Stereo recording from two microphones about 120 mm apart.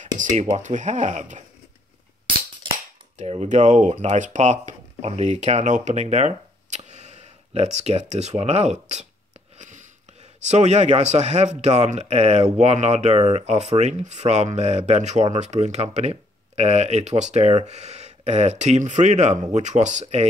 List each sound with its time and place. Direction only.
0.2 s speech: 80° right
3.2 s speech: 75° right (ahead or behind)
9.6 s a sound: 90° right
10.4 s speech: 75° right (ahead or behind)
19.5 s speech: 85° right